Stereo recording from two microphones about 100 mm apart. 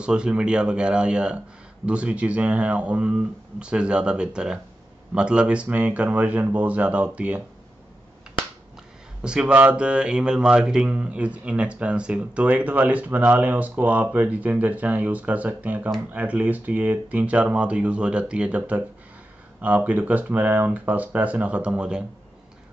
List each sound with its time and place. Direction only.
0.0 s speech: 10° right (ahead or behind)
9.2 s speech: 10° right (ahead or behind)